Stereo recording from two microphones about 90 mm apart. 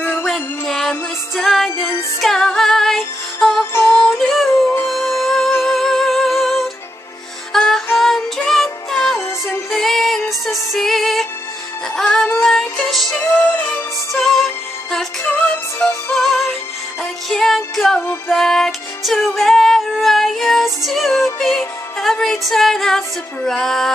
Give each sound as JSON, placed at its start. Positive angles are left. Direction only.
{"t": 0.2, "sound": "music", "side_deg": 0}
{"t": 4.5, "sound": "music", "side_deg": 25}
{"t": 4.8, "sound": "music", "side_deg": 5}
{"t": 16.1, "sound": "synthetic singing", "side_deg": 0}
{"t": 17.0, "sound": "music", "side_deg": 5}